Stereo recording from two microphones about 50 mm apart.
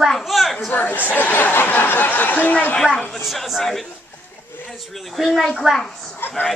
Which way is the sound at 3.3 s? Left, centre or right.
Centre.